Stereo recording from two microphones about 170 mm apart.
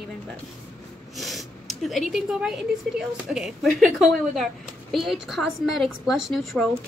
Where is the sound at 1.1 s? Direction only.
Centre (ahead or behind).